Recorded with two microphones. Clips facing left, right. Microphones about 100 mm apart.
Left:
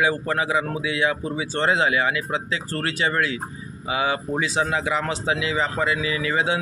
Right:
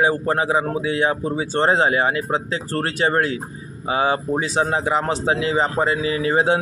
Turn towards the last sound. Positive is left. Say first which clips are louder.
# right 5 dB
turn(degrees=-40)  # may be behind; listen again after turning